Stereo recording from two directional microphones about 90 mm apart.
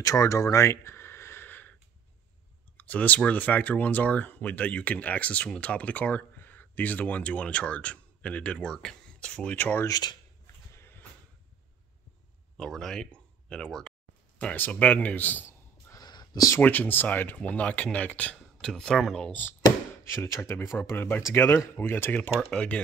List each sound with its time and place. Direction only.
0.0 s a sound: 35° left (ahead or behind); by 1.8 s 20° left (ahead or behind)
2.8 s speech: 15° left (ahead or behind)
9.8 s shuffling cards: 45° left (ahead or behind)
10.7 s a sound: 25° left (ahead or behind)
12.5 s speech: 5° left (ahead or behind)
14.4 s speech: 15° left (ahead or behind)
15.9 s whispering: 50° left (ahead or behind)
16.5 s speech: 20° left (ahead or behind); by 19.3 s 5° left (ahead or behind)
20.1 s speech: 35° left (ahead or behind)
22.4 s speech: 10° left (ahead or behind)